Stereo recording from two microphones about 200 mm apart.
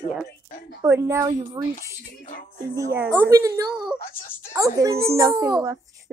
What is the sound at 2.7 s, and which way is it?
Speech, 10° right (ahead or behind).